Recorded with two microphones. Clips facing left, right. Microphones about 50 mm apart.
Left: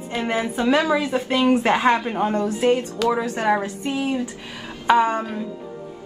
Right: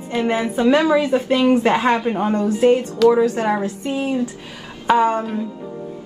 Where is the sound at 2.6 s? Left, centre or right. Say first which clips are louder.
Right 7 dB; centre.